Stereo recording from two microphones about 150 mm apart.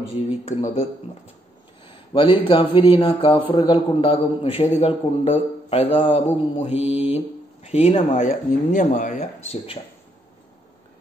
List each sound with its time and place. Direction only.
0.5 s speech: 45° left (ahead or behind)
1.9 s speech: 35° left (ahead or behind); by 9.6 s 55° left (ahead or behind)